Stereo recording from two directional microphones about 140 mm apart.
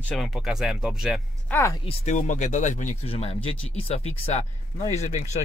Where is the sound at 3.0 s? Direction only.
45° left (ahead or behind).